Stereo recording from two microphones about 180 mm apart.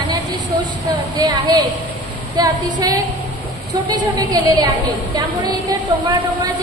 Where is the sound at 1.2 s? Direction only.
20° right (ahead or behind).